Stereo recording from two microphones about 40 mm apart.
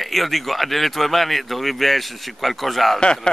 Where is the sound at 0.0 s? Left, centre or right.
Centre.